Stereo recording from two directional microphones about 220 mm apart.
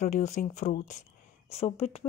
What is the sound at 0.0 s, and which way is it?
A woman's voice, 35° left (ahead or behind).